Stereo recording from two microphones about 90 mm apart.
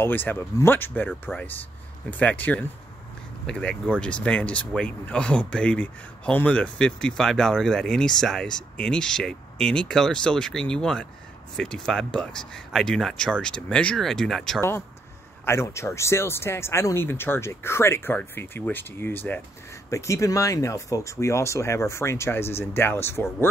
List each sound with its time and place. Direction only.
0.0 s speech: 20° left (ahead or behind); by 14.6 s 5° left (ahead or behind)
15.4 s speech: 30° left (ahead or behind)
19.9 s speech: 35° left (ahead or behind)